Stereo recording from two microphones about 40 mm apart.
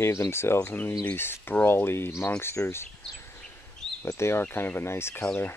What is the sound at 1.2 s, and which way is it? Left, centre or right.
Speech, left.